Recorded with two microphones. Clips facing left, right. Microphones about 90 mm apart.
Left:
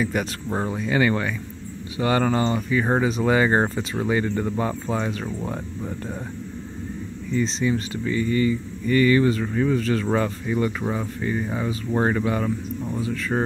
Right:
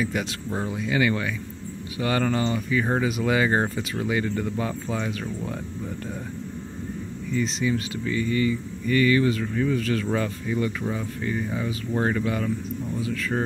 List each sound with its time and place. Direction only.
0.0 s speech: 45° left (ahead or behind)
2.0 s speech: 30° left (ahead or behind)
7.3 s speech: 35° left (ahead or behind)